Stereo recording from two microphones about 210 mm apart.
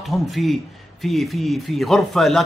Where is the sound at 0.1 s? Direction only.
Centre (ahead or behind).